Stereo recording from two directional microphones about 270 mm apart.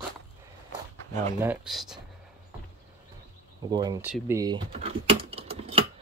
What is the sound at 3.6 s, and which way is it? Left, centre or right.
Speech, centre.